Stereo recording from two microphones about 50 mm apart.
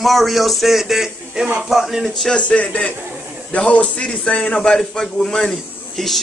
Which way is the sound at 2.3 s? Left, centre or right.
Left.